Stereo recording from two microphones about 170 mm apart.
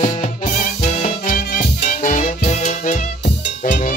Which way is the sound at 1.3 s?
50° left (ahead or behind).